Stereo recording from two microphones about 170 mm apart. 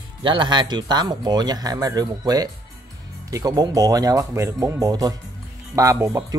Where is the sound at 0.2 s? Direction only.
30° right (ahead or behind).